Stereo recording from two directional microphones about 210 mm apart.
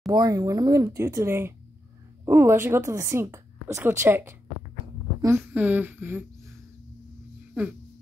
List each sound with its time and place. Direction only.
0.0 s a woman's voice: 15° right (ahead or behind)